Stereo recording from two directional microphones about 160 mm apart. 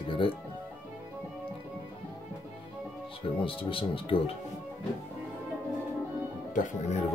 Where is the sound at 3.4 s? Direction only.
35° left (ahead or behind).